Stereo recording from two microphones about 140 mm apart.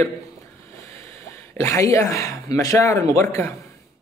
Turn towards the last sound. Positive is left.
turn(degrees=20)  # may be behind; listen again after turning